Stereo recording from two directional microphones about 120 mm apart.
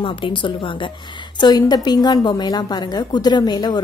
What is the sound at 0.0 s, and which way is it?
A woman's voice, 45° left (ahead or behind).